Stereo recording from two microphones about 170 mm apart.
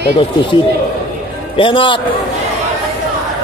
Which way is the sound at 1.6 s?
30° left (ahead or behind).